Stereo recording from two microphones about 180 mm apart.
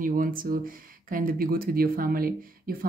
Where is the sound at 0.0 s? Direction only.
50° right (ahead or behind).